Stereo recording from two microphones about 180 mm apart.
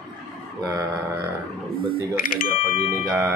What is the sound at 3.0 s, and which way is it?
Speech, 15° right (ahead or behind).